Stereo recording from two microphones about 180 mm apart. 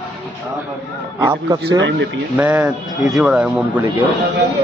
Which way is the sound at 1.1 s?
20° right (ahead or behind).